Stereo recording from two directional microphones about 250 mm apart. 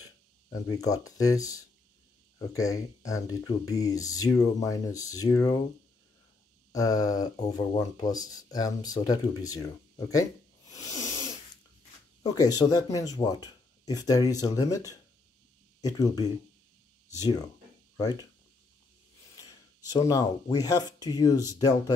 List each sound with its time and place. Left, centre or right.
0.5 s speech: centre
6.7 s speech: centre
10.7 s owl: centre
12.2 s speech: centre
17.9 s speech: centre
19.9 s speech: centre